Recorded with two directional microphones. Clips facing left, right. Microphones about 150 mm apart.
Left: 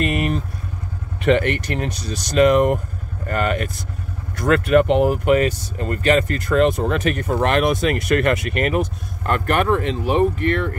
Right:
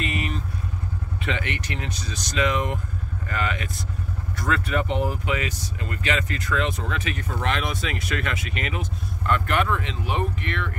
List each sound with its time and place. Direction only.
0.0 s vehicle: 55° left (ahead or behind)
1.2 s speech: 50° left (ahead or behind)
4.5 s speech: 65° left (ahead or behind); by 10.8 s 45° left (ahead or behind)